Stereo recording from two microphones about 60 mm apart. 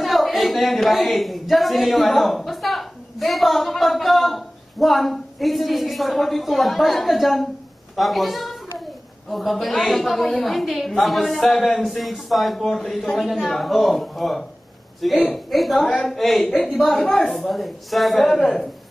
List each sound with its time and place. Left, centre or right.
0.0 s a woman's voice: centre
7.9 s a sound: centre
9.3 s a man's voice: centre